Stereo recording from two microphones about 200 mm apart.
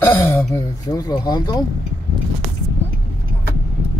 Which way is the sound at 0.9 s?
20° left (ahead or behind).